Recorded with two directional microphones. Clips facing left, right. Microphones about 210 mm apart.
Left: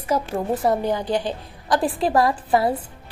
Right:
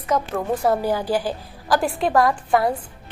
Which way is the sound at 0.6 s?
5° right (ahead or behind).